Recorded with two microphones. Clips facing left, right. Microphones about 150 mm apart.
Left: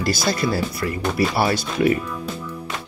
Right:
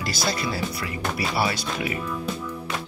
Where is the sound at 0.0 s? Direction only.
45° left (ahead or behind).